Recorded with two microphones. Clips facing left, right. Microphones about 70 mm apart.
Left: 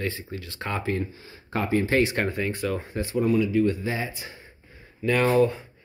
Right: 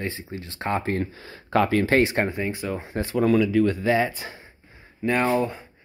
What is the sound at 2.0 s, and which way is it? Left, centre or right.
Speech, right.